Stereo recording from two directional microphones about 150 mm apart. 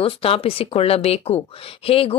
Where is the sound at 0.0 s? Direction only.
40° left (ahead or behind).